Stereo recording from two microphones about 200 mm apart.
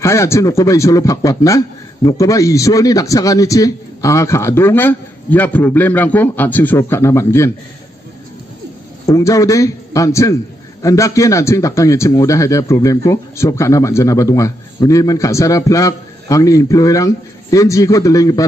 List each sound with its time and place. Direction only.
0.0 s speech: 15° left (ahead or behind)
9.0 s speech: 15° left (ahead or behind)